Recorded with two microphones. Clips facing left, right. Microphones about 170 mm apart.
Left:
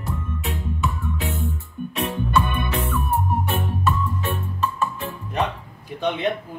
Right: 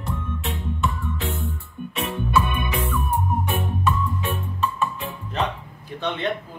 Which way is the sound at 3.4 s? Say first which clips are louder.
Even; 15° right (ahead or behind).